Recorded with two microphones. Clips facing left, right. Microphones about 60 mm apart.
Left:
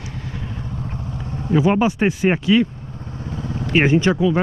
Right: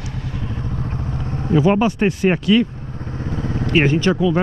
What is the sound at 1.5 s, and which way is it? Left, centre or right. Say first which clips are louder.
Speech: right 1 dB; centre.